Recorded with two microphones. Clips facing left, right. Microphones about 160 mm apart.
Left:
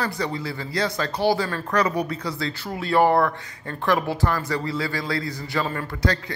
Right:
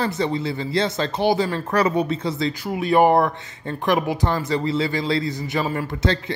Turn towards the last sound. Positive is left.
turn(degrees=-20)  # may be behind; listen again after turning